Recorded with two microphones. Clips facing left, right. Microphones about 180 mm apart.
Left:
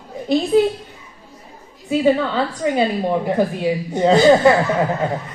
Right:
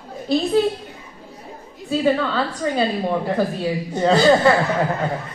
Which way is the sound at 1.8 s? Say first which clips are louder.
Left 3 dB; 15° left (ahead or behind).